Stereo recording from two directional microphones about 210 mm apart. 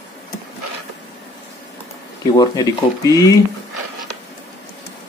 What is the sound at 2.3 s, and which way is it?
Speech, 15° left (ahead or behind).